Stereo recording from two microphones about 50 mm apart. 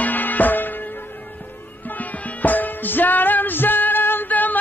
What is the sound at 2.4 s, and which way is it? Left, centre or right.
Music, left.